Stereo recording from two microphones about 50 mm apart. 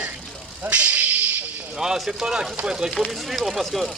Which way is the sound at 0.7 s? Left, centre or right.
Right.